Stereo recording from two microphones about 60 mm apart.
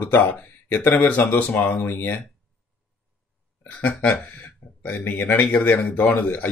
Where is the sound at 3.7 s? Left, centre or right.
Left.